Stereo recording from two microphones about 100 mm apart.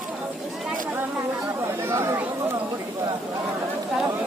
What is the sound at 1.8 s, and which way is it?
Speech, 25° right (ahead or behind).